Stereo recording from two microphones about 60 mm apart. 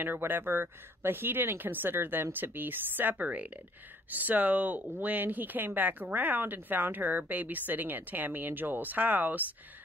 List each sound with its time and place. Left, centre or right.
0.0 s speech: right